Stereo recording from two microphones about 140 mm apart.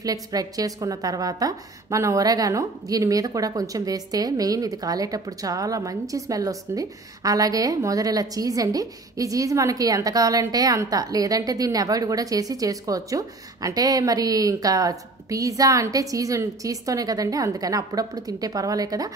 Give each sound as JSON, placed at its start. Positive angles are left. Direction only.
{"t": 0.0, "sound": "a woman's voice", "side_deg": -25}